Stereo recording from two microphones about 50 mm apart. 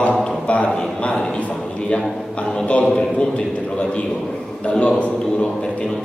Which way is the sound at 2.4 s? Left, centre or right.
Centre.